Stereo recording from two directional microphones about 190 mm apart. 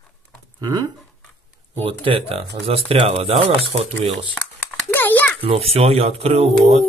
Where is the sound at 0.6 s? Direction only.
20° right (ahead or behind).